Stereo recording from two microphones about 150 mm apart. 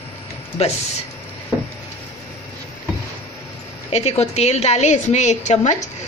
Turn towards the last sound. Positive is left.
turn(degrees=50)  # may be behind; listen again after turning